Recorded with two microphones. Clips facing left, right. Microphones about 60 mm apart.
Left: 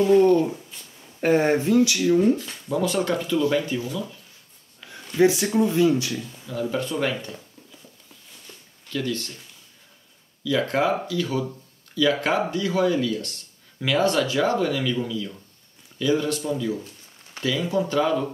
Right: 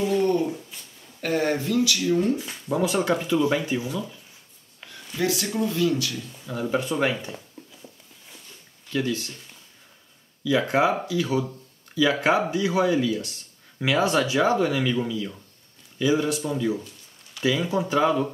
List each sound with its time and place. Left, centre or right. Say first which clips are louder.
0.1 s speech: left 7 dB; left
0.5 s a sound: right 1 dB; centre
1.2 s speech: left 5 dB; left
2.3 s speech: even; centre
5.1 s speech: left 7 dB; left
6.4 s speech: right 1 dB; centre
8.9 s speech: right 1 dB; centre
10.4 s speech: right 1 dB; centre